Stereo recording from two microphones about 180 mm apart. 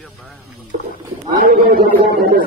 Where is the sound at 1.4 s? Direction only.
55° right (ahead or behind).